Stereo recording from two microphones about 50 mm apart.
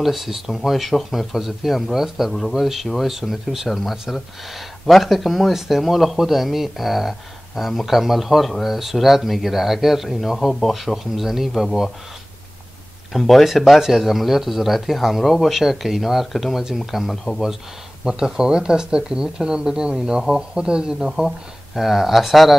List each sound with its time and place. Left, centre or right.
0.0 s speech: centre
13.1 s speech: centre
18.0 s speech: centre
21.7 s speech: centre